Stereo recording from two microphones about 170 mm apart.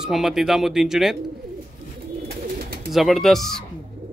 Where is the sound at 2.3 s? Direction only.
65° right (ahead or behind).